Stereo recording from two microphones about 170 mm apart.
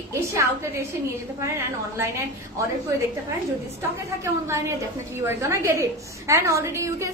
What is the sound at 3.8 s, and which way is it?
A woman's voice, 15° right (ahead or behind).